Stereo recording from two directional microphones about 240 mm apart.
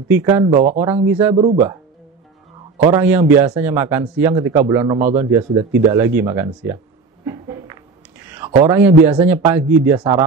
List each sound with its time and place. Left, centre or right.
0.1 s speech: centre
1.3 s speech: right
2.8 s speech: centre
7.2 s a sound: centre
8.5 s speech: centre